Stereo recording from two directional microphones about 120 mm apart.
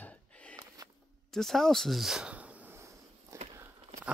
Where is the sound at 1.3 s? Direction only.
5° left (ahead or behind); by 2.7 s 10° right (ahead or behind).